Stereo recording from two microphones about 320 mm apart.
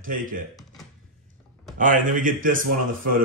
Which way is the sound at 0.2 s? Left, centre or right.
Right.